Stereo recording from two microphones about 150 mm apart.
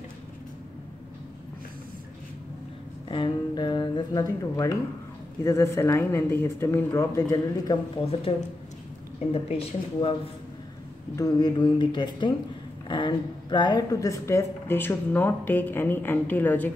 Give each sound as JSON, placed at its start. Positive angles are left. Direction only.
{"t": 3.1, "sound": "speech", "side_deg": 30}
{"t": 8.1, "sound": "speech", "side_deg": 40}
{"t": 11.1, "sound": "a woman's voice", "side_deg": 25}